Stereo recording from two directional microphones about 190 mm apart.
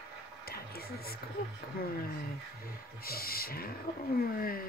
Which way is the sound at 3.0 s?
50° left (ahead or behind).